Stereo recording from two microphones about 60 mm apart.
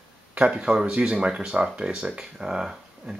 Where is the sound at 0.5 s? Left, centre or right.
Centre.